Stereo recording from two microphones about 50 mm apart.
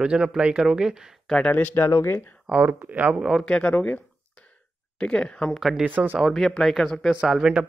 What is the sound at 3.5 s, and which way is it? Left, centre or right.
Speech, left.